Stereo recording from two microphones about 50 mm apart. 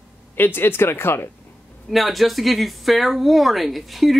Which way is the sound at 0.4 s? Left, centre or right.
Left.